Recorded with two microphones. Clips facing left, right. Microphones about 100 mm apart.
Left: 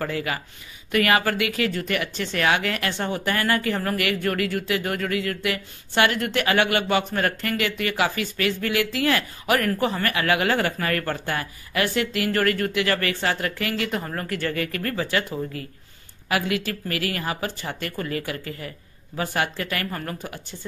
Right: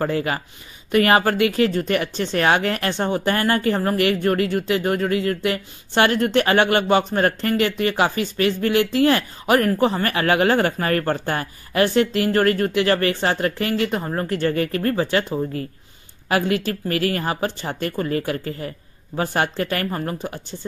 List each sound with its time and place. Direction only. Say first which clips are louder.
0.0 s speech: right 5 dB; 35° right (ahead or behind)